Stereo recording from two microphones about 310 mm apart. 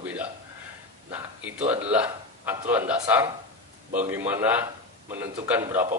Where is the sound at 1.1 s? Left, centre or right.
Centre.